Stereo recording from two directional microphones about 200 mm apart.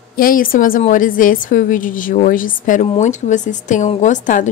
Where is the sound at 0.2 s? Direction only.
45° left (ahead or behind).